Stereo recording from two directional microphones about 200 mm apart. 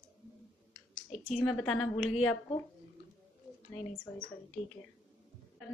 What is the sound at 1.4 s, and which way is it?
Speech, 5° left (ahead or behind).